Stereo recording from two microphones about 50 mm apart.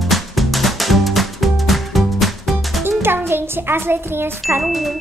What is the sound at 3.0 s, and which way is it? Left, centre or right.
A child's voice, right.